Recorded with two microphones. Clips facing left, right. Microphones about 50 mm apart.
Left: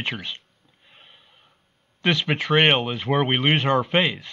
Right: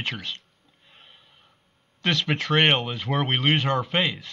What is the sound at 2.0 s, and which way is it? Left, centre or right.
Speech, centre.